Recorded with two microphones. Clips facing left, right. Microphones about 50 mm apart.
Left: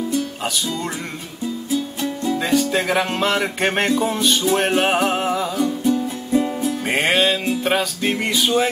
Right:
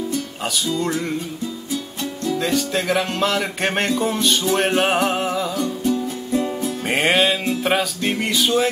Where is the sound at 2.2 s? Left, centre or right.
Centre.